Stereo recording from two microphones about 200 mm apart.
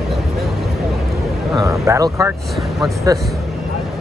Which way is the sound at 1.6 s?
15° right (ahead or behind).